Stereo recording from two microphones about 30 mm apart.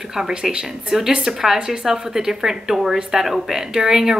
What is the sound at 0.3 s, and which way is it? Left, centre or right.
Speech, right.